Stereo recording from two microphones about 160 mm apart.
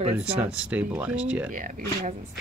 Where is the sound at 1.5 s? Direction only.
55° right (ahead or behind).